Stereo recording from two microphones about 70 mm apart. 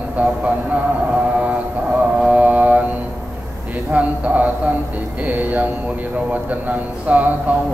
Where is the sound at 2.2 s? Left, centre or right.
Centre.